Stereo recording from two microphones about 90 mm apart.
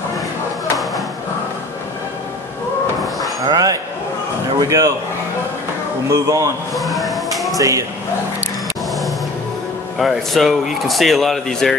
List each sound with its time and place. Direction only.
3.4 s speech: 45° right (ahead or behind)
6.0 s speech: 35° right (ahead or behind)
6.7 s a sound: centre (ahead or behind)
7.5 s speech: 35° right (ahead or behind)
9.9 s speech: centre (ahead or behind)